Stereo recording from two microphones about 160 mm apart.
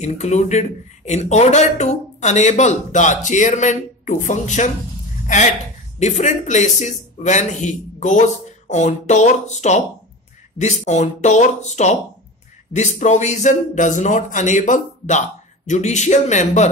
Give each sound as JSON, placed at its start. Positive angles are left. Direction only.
{"t": 0.0, "sound": "speech", "side_deg": 45}